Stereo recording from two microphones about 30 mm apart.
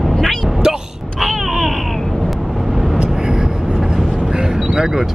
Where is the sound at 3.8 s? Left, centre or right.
Centre.